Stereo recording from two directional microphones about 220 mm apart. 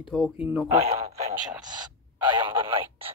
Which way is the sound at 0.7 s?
30° right (ahead or behind).